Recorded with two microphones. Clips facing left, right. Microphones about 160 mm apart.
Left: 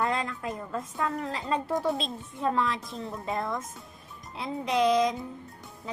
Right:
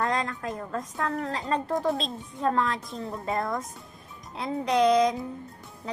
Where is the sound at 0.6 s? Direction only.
45° right (ahead or behind).